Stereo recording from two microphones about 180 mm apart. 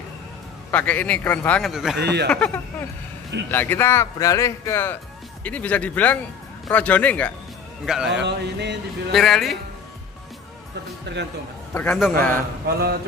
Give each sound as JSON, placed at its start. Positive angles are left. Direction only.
{"t": 0.7, "sound": "speech", "side_deg": 10}
{"t": 1.7, "sound": "speech", "side_deg": 0}
{"t": 2.0, "sound": "a sound", "side_deg": -65}
{"t": 2.2, "sound": "speech", "side_deg": 5}
{"t": 7.8, "sound": "speech", "side_deg": -5}
{"t": 8.1, "sound": "a sound", "side_deg": -70}
{"t": 9.1, "sound": "speech", "side_deg": 0}
{"t": 11.1, "sound": "a sound", "side_deg": -75}
{"t": 11.7, "sound": "a man's voice", "side_deg": 10}
{"t": 12.6, "sound": "mantra", "side_deg": -60}